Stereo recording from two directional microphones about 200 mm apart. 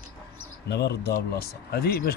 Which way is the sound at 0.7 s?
55° left (ahead or behind).